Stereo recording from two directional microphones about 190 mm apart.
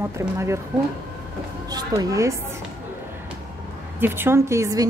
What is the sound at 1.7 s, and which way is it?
Speech, 20° right (ahead or behind).